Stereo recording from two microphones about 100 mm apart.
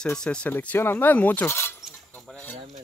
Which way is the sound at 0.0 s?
10° left (ahead or behind).